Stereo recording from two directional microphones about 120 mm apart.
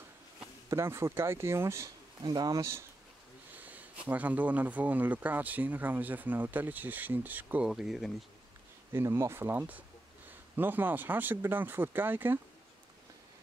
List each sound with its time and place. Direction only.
0.7 s speech: 25° right (ahead or behind)
2.2 s speech: 35° right (ahead or behind)
3.5 s speech: 15° right (ahead or behind)
8.9 s speech: 20° right (ahead or behind)